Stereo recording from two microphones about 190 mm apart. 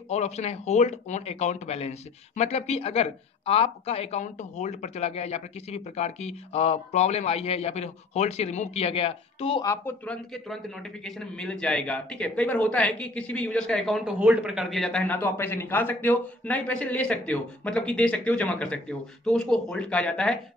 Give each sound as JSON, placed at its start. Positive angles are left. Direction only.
{"t": 0.1, "sound": "speech", "side_deg": 35}
{"t": 9.7, "sound": "a man's voice", "side_deg": 10}